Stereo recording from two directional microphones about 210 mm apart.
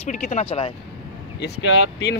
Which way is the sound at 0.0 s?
35° left (ahead or behind).